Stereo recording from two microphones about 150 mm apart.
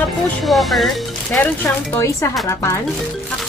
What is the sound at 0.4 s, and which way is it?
Speech, centre (ahead or behind).